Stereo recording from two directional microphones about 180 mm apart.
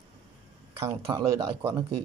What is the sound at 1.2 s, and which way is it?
Speech, 30° right (ahead or behind).